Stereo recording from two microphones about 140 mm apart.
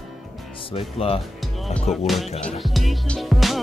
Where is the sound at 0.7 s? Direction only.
40° left (ahead or behind).